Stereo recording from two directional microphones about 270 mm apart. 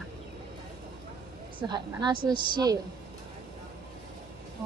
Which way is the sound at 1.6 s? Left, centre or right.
Centre.